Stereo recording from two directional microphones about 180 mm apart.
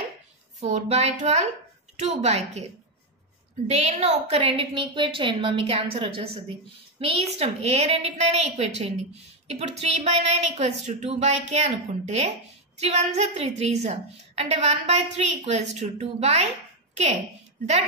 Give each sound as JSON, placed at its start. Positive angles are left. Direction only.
{"t": 0.6, "sound": "a woman's voice", "side_deg": -40}
{"t": 3.6, "sound": "a woman's voice", "side_deg": -40}